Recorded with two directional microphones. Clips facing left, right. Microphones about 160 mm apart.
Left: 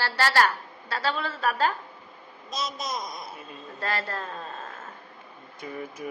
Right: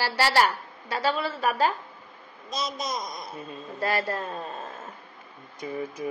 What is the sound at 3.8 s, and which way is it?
Speech, 10° right (ahead or behind).